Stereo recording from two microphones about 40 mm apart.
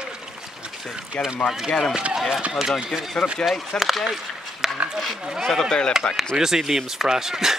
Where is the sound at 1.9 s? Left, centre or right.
Right.